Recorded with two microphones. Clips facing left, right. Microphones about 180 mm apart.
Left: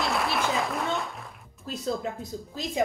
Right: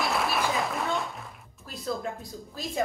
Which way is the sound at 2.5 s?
20° left (ahead or behind).